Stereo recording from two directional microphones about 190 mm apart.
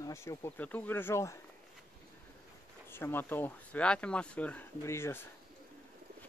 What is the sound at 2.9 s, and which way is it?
Speech, 10° left (ahead or behind).